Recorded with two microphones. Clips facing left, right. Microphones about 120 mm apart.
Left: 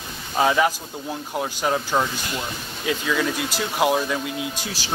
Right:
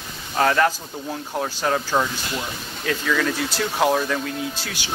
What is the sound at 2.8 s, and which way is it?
Speech, 10° left (ahead or behind).